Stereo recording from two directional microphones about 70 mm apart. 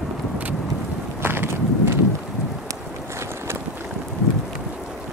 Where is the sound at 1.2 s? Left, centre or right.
Right.